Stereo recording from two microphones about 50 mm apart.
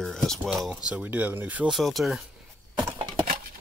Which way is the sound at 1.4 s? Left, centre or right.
Right.